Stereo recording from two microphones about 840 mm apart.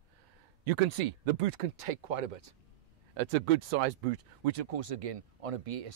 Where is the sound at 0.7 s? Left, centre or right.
Right.